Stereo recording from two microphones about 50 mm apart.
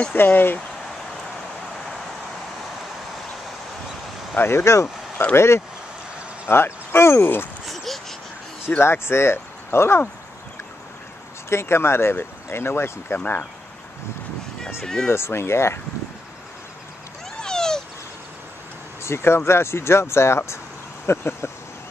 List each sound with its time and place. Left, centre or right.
0.1 s speech: left
4.4 s speech: left
7.6 s a sound: centre
8.6 s speech: left
11.4 s speech: left
15.0 s speech: left
17.4 s cat: centre
19.0 s speech: left